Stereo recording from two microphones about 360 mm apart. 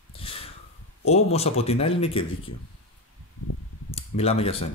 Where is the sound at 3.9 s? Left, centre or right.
Centre.